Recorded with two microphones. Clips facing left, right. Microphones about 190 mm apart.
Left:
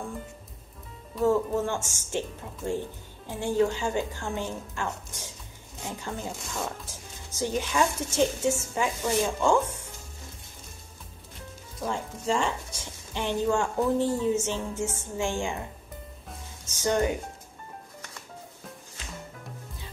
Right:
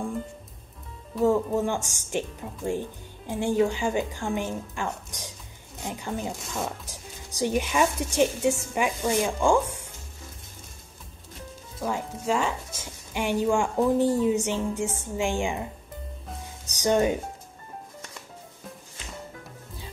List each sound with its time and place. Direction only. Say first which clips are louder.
1.2 s speech: right 2 dB; 15° right (ahead or behind)
11.8 s speech: right 2 dB; 5° right (ahead or behind)
16.6 s music: right 3 dB; 15° right (ahead or behind)